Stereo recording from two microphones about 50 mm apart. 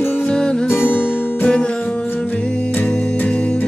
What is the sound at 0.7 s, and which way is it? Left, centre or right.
Music, left.